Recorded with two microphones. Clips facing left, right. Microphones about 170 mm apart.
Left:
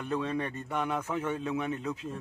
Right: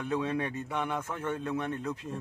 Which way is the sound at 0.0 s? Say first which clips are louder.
Right 1 dB; 5° right (ahead or behind).